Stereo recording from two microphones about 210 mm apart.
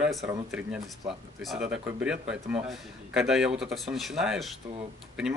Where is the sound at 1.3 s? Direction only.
5° right (ahead or behind).